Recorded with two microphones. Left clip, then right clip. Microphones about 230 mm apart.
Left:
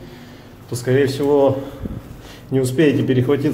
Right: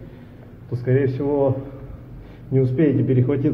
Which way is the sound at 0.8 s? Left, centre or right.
Centre.